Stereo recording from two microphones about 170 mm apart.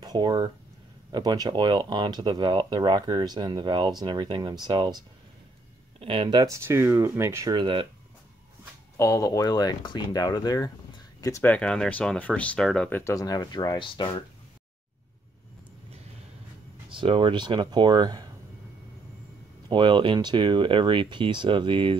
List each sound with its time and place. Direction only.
0.0 s speech: 25° right (ahead or behind)
6.4 s speech: 15° right (ahead or behind)
7.5 s speech: 30° right (ahead or behind)
8.9 s speech: 15° left (ahead or behind)
16.9 s speech: 30° right (ahead or behind)
19.7 s speech: 30° right (ahead or behind)